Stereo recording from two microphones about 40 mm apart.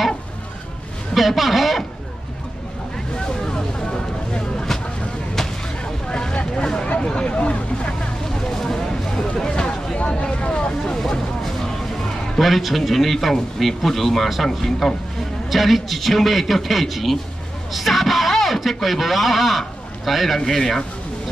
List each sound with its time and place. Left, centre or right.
1.1 s speech: centre
3.4 s vehicle: centre
6.0 s vehicle: left
8.5 s a sound: centre
10.0 s vehicle: left
11.0 s vehicle: centre
12.4 s speech: centre